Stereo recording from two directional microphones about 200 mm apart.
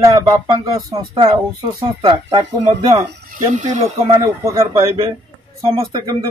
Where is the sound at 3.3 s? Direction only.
35° right (ahead or behind).